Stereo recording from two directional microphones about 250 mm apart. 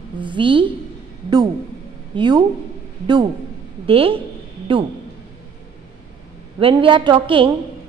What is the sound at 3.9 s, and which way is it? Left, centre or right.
Speech, right.